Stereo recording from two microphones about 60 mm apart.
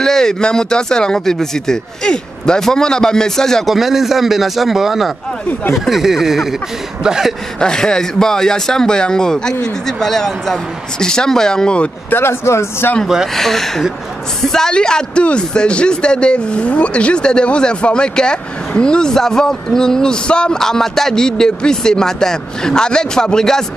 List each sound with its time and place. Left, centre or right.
0.0 s speech: centre
3.6 s a man's voice: centre
7.6 s speech: centre
12.1 s speech: left
13.3 s a man's voice: centre